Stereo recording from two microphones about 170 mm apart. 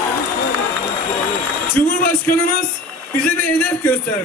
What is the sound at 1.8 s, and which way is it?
Speech, 55° left (ahead or behind).